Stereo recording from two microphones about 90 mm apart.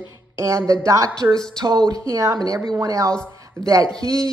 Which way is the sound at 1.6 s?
50° right (ahead or behind).